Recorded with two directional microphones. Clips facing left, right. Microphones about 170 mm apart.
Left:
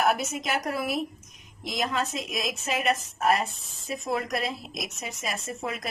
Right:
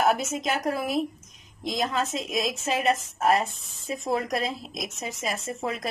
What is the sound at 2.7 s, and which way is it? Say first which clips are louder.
A woman's voice: right 2 dB; 25° right (ahead or behind).